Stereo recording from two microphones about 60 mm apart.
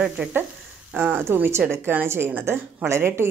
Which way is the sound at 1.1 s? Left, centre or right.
Right.